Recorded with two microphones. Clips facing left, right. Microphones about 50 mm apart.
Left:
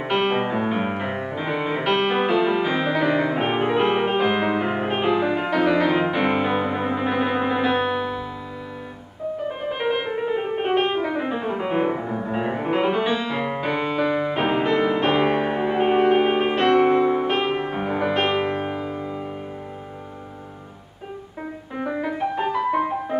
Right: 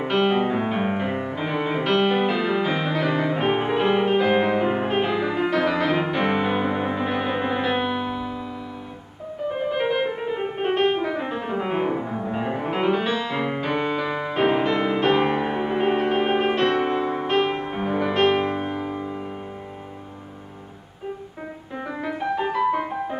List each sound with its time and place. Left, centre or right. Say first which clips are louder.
0.0 s music: right 1 dB; centre
0.5 s music: even; centre
9.8 s music: left 1 dB; centre
12.2 s music: left 1 dB; centre
15.1 s music: left 1 dB; left
16.8 s music: left 5 dB; centre
21.7 s piano: left 3 dB; centre